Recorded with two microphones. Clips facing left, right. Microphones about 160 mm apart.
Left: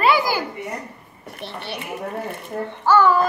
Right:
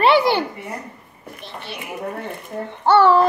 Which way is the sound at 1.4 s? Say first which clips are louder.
Left 3 dB; 65° left (ahead or behind).